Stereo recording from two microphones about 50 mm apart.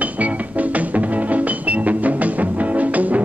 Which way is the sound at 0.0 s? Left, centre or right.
Right.